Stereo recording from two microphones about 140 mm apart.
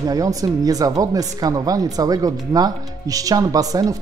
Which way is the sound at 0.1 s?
25° right (ahead or behind).